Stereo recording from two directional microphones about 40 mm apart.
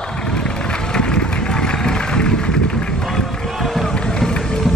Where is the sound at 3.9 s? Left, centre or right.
Left.